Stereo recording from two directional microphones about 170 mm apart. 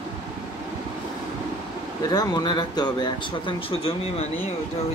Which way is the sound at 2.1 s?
25° left (ahead or behind).